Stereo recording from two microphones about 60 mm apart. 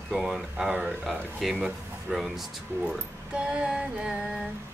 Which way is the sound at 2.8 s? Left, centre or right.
Centre.